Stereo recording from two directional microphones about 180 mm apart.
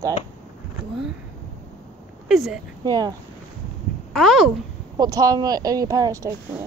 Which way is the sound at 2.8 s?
20° right (ahead or behind).